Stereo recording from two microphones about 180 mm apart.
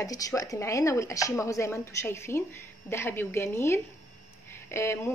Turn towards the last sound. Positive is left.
turn(degrees=15)  # may be behind; listen again after turning